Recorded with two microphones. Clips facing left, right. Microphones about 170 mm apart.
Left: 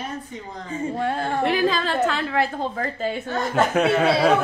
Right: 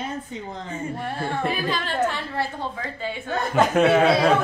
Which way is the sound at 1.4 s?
80° left.